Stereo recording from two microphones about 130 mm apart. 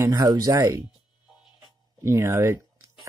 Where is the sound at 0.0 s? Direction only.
30° right (ahead or behind).